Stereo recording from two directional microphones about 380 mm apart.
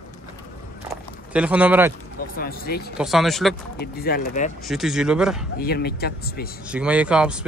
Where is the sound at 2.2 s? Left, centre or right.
Left.